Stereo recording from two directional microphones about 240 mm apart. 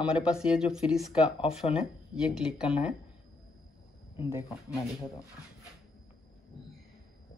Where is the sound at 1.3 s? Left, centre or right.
Left.